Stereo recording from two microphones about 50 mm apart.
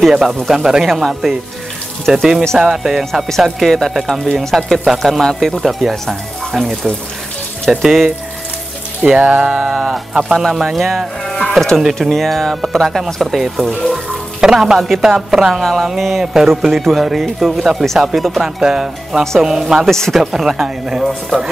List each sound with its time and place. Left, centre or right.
0.1 s a woman's voice: centre
3.1 s speech: centre
7.8 s speech: centre
9.1 s speech: right
9.8 s speech: centre
10.1 s a woman's voice: centre
14.4 s a woman's voice: centre
18.6 s a woman's voice: centre
19.9 s speech: centre
20.2 s a woman's voice: centre
21.0 s speech: centre